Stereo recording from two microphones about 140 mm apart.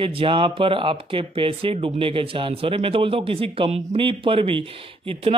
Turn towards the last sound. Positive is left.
turn(degrees=-40)  # may be behind; listen again after turning